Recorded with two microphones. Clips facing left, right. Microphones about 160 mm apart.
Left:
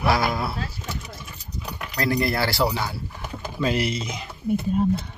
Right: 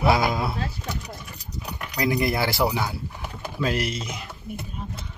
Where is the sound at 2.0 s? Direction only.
15° right (ahead or behind).